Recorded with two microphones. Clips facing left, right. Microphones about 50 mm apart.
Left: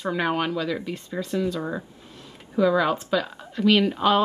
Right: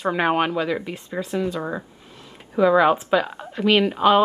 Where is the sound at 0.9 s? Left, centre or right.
Centre.